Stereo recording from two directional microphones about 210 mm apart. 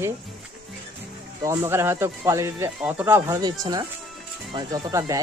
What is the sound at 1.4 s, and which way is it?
Speech, 15° right (ahead or behind).